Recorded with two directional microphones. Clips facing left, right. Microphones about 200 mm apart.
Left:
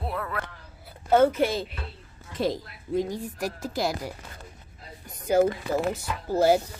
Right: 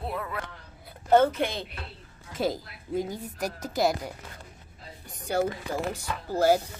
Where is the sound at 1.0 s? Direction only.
5° left (ahead or behind).